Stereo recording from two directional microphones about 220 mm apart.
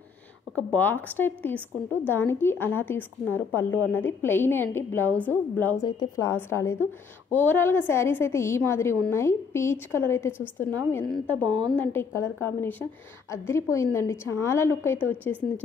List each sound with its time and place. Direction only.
0.7 s a woman's voice: 10° left (ahead or behind)
11.4 s a woman's voice: 20° right (ahead or behind)
11.8 s a woman's voice: 10° left (ahead or behind)